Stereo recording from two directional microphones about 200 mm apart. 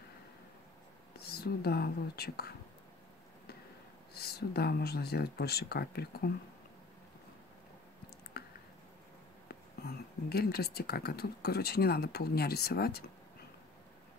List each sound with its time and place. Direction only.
1.1 s speech: 50° left (ahead or behind)
4.1 s speech: 50° left (ahead or behind)
8.3 s a sound: 50° left (ahead or behind)
9.5 s speech: 50° left (ahead or behind)